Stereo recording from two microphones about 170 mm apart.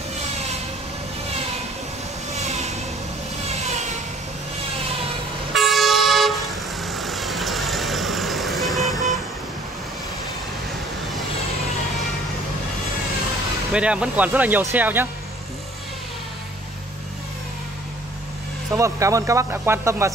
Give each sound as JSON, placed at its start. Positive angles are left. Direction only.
{"t": 2.4, "sound": "vehicle", "side_deg": -40}
{"t": 5.5, "sound": "toot", "side_deg": 0}
{"t": 13.7, "sound": "speech", "side_deg": -5}
{"t": 18.8, "sound": "speech", "side_deg": -15}